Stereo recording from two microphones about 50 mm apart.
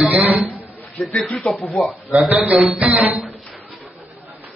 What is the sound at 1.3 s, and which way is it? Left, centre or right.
Speech, centre.